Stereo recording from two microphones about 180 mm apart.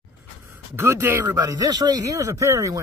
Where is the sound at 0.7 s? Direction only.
15° right (ahead or behind).